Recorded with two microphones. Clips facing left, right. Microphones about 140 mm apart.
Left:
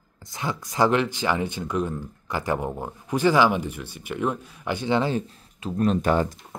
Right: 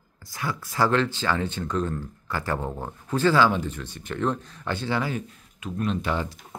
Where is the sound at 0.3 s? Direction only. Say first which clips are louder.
Left 1 dB; 20° left (ahead or behind).